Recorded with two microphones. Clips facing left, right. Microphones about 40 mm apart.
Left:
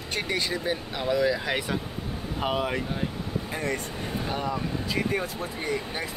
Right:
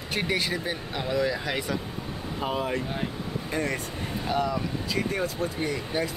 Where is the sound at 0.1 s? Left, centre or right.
Centre.